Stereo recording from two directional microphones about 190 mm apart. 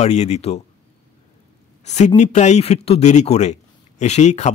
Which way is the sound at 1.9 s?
35° left (ahead or behind).